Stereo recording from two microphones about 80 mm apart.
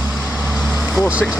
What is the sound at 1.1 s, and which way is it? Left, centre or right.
Speech, centre.